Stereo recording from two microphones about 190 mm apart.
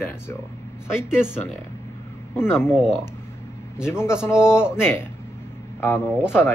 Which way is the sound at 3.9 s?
15° left (ahead or behind).